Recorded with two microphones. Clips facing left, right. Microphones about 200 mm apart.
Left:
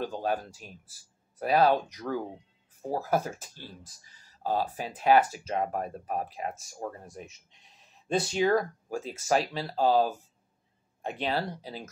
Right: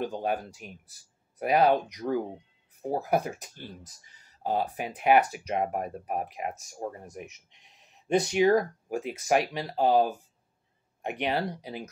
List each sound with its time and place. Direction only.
0.0 s speech: 15° right (ahead or behind)